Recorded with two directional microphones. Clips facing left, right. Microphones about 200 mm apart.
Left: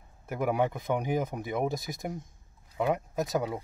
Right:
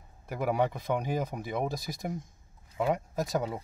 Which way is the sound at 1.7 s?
20° left (ahead or behind).